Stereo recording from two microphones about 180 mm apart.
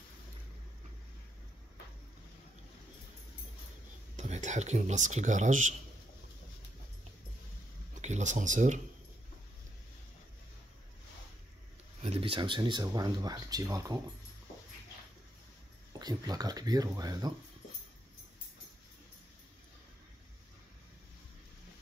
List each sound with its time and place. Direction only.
4.2 s speech: 40° right (ahead or behind)
8.0 s speech: 40° right (ahead or behind)
12.0 s speech: 30° right (ahead or behind)
16.0 s speech: 20° right (ahead or behind)